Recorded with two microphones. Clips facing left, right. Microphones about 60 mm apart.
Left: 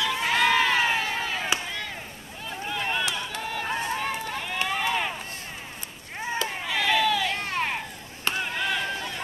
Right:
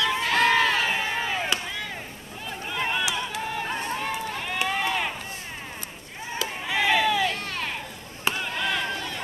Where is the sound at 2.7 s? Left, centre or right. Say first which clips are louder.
Right 1 dB; centre.